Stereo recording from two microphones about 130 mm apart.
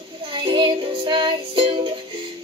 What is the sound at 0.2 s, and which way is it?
Music, 45° right (ahead or behind).